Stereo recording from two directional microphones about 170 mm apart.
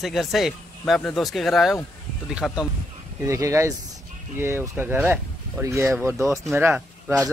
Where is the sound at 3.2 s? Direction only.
20° right (ahead or behind).